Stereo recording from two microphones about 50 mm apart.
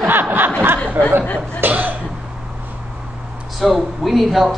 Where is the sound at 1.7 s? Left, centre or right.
Right.